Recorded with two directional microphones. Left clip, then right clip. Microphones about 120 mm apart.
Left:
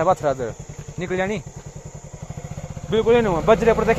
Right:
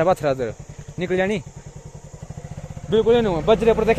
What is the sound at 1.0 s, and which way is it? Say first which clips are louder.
Speech: right 2 dB; 90° right.